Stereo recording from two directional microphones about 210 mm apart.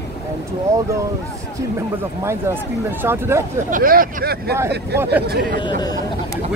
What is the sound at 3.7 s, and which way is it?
Speech, 40° right (ahead or behind).